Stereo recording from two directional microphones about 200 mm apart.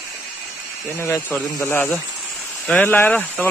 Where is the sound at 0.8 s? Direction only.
15° left (ahead or behind).